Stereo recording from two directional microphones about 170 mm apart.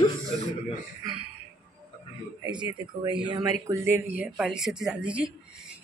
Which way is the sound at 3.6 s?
15° right (ahead or behind).